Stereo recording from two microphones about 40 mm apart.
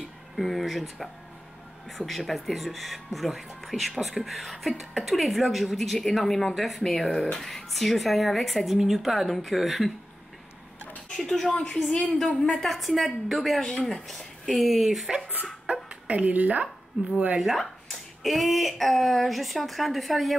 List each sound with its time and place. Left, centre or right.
0.4 s speech: centre
11.1 s speech: centre
15.7 s a sound: right
16.1 s speech: right
17.4 s speech: centre